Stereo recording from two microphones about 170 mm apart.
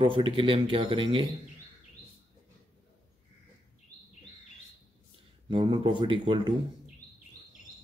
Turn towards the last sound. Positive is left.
turn(degrees=-30)  # may be behind; listen again after turning